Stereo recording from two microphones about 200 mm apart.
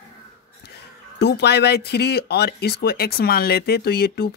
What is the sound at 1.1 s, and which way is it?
Speech, 55° left (ahead or behind).